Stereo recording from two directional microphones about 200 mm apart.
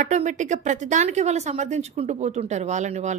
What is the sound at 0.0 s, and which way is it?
A woman's voice, 35° right (ahead or behind).